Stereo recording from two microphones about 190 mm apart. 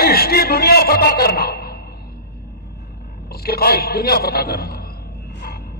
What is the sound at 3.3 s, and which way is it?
A man's voice, 55° left (ahead or behind).